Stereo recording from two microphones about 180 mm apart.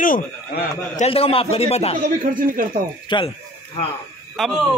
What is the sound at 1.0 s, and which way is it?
Speech, 30° left (ahead or behind).